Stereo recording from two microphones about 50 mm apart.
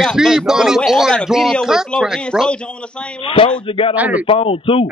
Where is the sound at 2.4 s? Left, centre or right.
Centre.